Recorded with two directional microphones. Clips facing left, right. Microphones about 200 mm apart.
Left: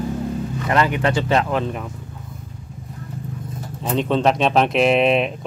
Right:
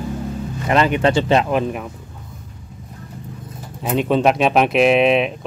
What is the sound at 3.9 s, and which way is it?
Speech, 10° right (ahead or behind).